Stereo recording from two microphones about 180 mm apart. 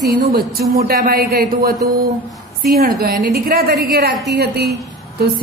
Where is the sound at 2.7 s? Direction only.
55° right (ahead or behind).